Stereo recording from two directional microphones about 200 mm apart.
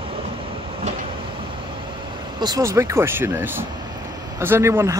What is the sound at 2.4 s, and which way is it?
Speech, 15° right (ahead or behind).